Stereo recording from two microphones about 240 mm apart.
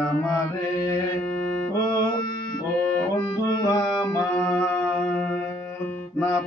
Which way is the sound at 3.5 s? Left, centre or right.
Centre.